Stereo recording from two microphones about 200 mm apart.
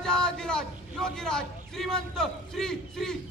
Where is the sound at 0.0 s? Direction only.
5° left (ahead or behind).